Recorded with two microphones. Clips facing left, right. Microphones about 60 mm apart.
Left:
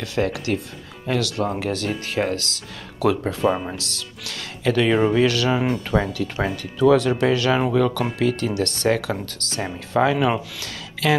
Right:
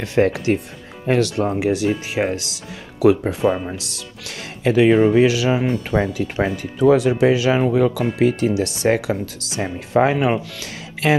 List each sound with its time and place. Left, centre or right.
0.0 s speech: right
1.5 s speech: centre
3.4 s speech: centre
3.7 s speech: centre
8.8 s speech: right
9.1 s speech: centre